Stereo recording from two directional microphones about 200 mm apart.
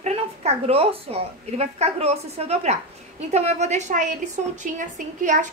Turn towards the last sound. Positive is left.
turn(degrees=-40)  # may be behind; listen again after turning